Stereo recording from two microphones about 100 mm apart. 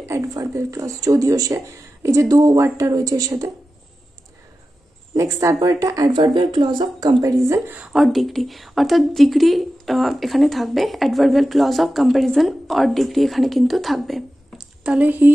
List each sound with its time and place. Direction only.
0.3 s speech: 35° right (ahead or behind)
5.1 s speech: 35° right (ahead or behind)
6.1 s speech: 50° right (ahead or behind)
7.4 s a woman's voice: 30° right (ahead or behind)
7.9 s a woman's voice: centre (ahead or behind); by 15.3 s 20° right (ahead or behind)